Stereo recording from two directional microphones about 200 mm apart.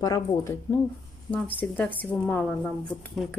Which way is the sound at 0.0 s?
15° left (ahead or behind).